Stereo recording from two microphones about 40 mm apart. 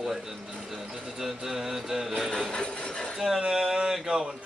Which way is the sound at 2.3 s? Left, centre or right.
Left.